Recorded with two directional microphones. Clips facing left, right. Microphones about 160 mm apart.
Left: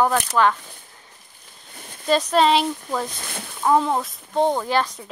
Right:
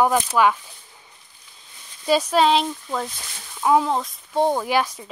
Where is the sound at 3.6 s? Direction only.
5° right (ahead or behind).